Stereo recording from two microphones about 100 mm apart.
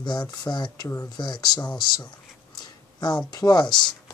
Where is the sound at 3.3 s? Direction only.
45° left (ahead or behind).